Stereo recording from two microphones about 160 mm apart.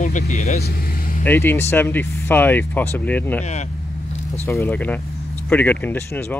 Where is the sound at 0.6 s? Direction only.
70° left (ahead or behind).